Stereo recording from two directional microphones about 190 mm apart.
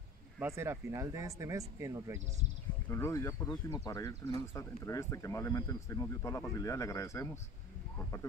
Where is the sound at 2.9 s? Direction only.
15° left (ahead or behind).